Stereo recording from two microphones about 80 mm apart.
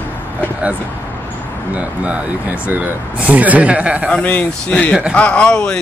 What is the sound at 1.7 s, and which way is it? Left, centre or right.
Speech, centre.